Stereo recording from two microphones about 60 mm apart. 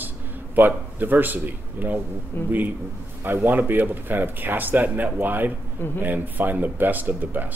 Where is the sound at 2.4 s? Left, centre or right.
Left.